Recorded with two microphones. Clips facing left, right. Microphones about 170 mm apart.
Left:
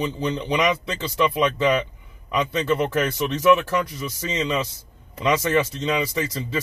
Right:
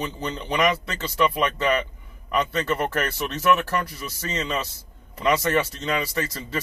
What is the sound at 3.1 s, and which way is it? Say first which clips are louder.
A man's voice: left 5 dB; 15° left (ahead or behind).